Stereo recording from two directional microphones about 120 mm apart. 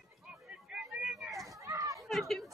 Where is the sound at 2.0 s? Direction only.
Centre (ahead or behind).